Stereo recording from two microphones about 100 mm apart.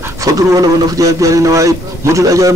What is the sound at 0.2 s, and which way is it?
A man's voice, 35° right (ahead or behind).